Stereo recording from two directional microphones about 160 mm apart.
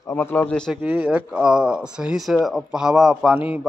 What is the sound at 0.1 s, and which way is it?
Speech, 10° left (ahead or behind).